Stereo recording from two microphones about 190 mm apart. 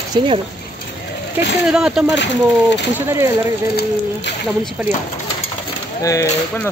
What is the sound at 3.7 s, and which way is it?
Speech, 65° left (ahead or behind).